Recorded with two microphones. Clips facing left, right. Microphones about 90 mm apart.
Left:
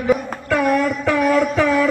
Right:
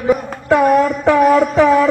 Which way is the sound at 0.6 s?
40° right (ahead or behind).